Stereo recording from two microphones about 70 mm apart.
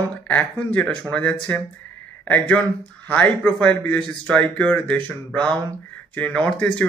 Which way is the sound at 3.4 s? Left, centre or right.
Left.